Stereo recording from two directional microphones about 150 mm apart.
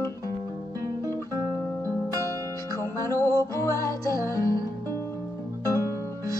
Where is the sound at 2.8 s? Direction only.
20° left (ahead or behind).